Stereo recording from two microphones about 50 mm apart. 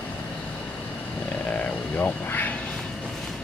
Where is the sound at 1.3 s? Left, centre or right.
Left.